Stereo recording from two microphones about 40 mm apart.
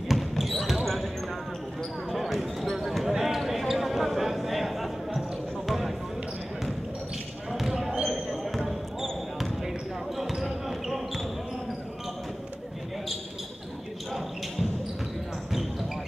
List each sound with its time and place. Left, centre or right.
0.1 s basketball bounce: centre
7.7 s basketball bounce: centre
8.1 s basketball bounce: centre